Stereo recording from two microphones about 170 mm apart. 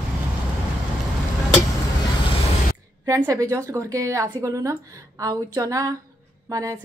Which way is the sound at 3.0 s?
20° right (ahead or behind).